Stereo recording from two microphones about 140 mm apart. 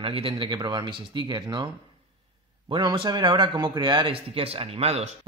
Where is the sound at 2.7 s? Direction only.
35° right (ahead or behind).